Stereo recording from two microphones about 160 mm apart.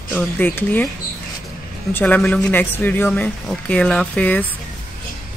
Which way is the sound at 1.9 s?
10° left (ahead or behind).